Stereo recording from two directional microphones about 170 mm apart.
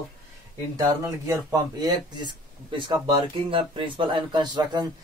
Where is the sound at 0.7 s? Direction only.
15° right (ahead or behind).